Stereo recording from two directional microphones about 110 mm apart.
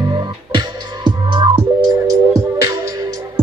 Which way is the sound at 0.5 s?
45° right (ahead or behind).